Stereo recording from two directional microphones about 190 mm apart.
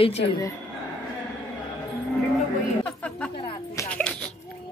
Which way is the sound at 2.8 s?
5° left (ahead or behind).